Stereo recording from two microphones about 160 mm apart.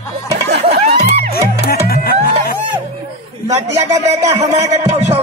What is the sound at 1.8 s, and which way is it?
Music, 70° left (ahead or behind).